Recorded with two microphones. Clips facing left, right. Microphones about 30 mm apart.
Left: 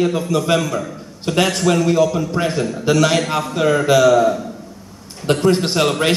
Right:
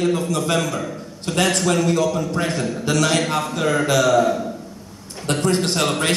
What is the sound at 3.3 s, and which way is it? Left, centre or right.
A man's voice, centre.